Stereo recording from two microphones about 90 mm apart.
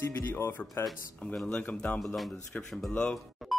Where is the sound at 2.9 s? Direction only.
10° left (ahead or behind).